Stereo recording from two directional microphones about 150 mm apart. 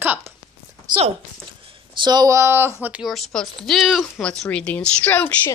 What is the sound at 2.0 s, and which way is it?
Speech, 25° right (ahead or behind).